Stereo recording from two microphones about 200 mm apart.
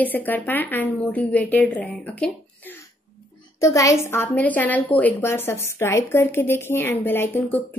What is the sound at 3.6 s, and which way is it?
A child's voice, 15° left (ahead or behind).